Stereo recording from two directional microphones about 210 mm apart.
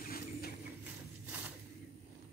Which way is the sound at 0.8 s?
10° right (ahead or behind).